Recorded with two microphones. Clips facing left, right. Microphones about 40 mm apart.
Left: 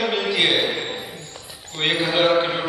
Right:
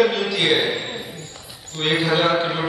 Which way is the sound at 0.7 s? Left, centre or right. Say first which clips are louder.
Even; centre.